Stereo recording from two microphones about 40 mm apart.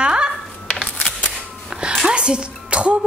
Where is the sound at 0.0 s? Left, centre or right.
Right.